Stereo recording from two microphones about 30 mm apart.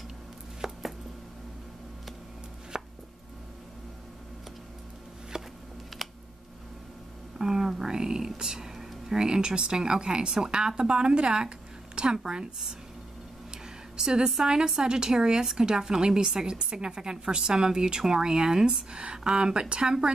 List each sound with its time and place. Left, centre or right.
0.6 s chopping: centre
2.7 s chopping: right
5.3 s a sound: right
6.0 s a sound: centre
7.3 s music: centre
9.3 s a woman's voice: right
13.5 s a sound: right
14.3 s a woman's voice: right
18.9 s a woman's voice: right